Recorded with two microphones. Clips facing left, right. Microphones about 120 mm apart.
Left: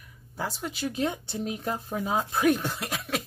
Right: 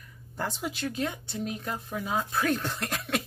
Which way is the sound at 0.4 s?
Centre (ahead or behind).